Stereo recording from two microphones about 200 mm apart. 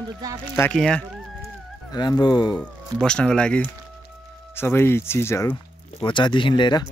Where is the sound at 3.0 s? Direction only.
5° left (ahead or behind).